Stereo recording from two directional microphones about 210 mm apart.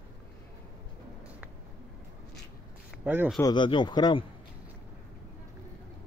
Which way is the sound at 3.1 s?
10° right (ahead or behind).